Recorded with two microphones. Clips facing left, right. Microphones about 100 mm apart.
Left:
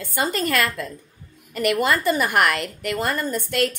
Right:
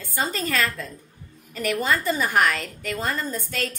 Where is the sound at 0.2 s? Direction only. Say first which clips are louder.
Left 3 dB; 65° left (ahead or behind).